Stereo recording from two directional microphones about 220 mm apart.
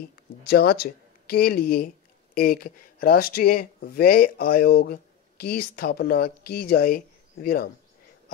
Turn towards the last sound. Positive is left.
turn(degrees=40)  # may be behind; listen again after turning